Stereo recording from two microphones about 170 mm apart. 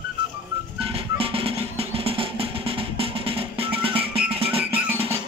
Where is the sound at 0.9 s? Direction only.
30° right (ahead or behind).